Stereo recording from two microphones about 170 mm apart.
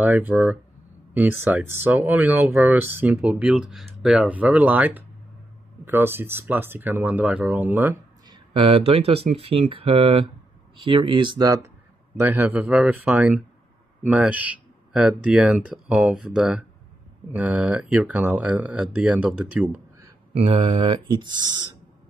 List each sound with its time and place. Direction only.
0.0 s speech: 10° right (ahead or behind)
8.3 s speech: 30° right (ahead or behind)
12.2 s speech: 10° right (ahead or behind)
20.3 s speech: 30° right (ahead or behind)